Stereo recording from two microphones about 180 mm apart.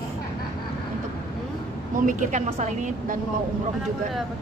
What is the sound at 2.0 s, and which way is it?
A woman's voice, 45° right (ahead or behind).